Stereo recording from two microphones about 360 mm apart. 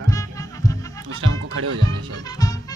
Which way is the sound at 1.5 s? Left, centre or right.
Right.